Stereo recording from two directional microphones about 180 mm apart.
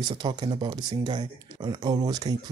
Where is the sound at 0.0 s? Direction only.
25° right (ahead or behind).